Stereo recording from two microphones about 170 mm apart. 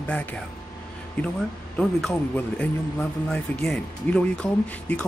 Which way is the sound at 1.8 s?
5° left (ahead or behind).